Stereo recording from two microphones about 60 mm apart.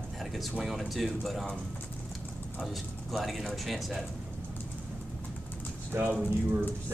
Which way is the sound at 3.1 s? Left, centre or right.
Centre.